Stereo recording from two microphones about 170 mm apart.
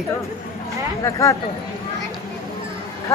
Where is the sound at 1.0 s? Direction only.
20° left (ahead or behind).